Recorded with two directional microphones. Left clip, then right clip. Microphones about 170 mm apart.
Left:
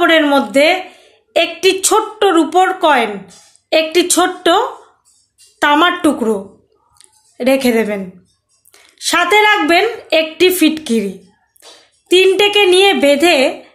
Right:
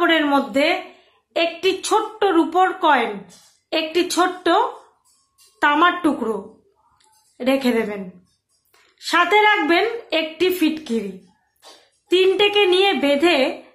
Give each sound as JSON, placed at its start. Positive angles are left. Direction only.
{"t": 0.0, "sound": "a woman's voice", "side_deg": 45}
{"t": 7.3, "sound": "a woman's voice", "side_deg": 40}
{"t": 12.1, "sound": "a woman's voice", "side_deg": 40}